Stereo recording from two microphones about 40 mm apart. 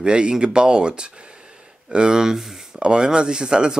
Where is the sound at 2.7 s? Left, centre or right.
Right.